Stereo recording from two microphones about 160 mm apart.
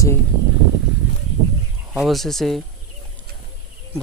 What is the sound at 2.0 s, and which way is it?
Speech, centre (ahead or behind).